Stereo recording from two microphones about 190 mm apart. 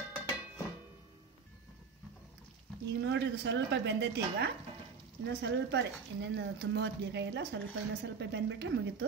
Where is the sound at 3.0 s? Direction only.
65° right (ahead or behind).